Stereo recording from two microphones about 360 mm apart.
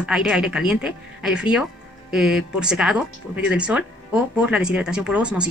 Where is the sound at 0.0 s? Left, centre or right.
Centre.